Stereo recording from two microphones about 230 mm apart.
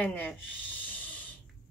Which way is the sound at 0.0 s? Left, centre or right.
Centre.